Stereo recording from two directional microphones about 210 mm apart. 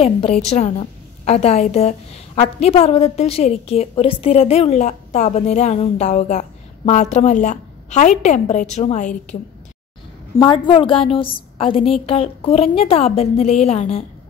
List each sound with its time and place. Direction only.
0.0 s a woman's voice: 30° left (ahead or behind)
10.4 s a woman's voice: 20° left (ahead or behind)